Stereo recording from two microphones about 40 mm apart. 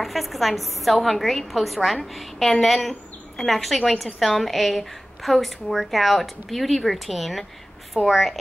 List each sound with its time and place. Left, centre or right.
0.0 s a woman's voice: centre